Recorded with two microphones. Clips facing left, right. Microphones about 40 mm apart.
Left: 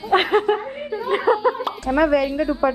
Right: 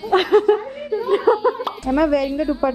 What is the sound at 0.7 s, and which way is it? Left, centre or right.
Chuckle, left.